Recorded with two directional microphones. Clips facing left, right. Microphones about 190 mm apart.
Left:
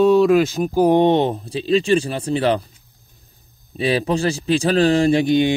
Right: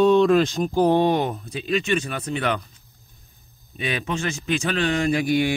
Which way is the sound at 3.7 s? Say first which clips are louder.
Left 8 dB; 35° left (ahead or behind).